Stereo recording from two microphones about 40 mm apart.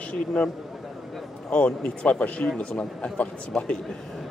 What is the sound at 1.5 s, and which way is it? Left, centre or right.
Speech, left.